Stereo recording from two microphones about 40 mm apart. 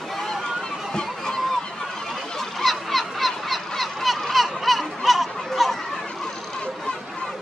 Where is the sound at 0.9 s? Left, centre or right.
Centre.